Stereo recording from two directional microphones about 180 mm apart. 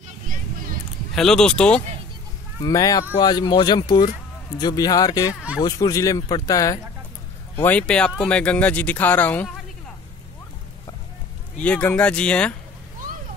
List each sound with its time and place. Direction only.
0.3 s a sound: 50° right (ahead or behind)
1.1 s speech: 5° left (ahead or behind)
2.6 s speech: 20° left (ahead or behind)
11.6 s speech: 5° left (ahead or behind)